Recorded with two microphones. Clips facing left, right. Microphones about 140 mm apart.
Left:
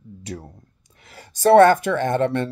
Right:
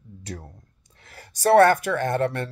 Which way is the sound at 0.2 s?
10° left (ahead or behind).